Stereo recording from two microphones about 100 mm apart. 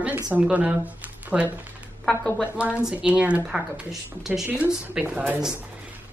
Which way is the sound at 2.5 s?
15° right (ahead or behind).